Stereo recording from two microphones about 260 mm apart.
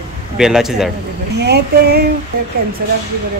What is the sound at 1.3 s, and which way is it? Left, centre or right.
Speech, right.